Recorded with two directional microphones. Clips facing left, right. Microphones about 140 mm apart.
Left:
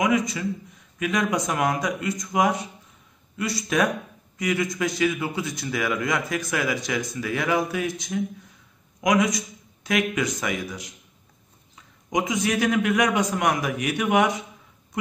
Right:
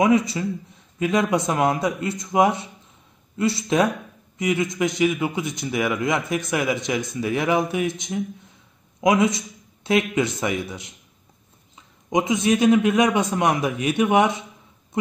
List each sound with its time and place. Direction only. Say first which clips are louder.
0.0 s a man's voice: right 4 dB; 30° right (ahead or behind)